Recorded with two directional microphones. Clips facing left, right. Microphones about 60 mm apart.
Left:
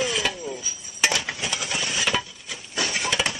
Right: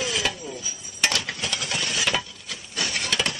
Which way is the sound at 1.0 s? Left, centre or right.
Centre.